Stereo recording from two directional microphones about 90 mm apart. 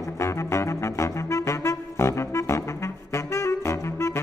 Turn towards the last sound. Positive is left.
turn(degrees=30)  # may be behind; listen again after turning